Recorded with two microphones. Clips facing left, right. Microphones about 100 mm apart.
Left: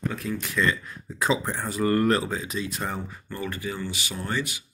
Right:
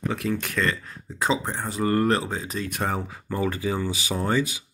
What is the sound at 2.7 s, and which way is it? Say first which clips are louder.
Speech: right 4 dB; 70° right (ahead or behind).